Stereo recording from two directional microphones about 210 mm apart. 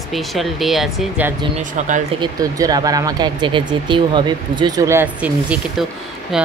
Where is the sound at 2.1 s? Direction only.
15° right (ahead or behind).